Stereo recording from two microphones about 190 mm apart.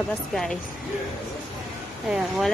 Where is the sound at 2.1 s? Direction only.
5° right (ahead or behind).